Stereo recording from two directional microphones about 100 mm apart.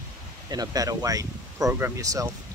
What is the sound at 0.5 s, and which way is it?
Speech, 40° right (ahead or behind).